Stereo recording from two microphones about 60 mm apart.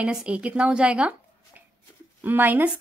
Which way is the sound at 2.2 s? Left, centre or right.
Right.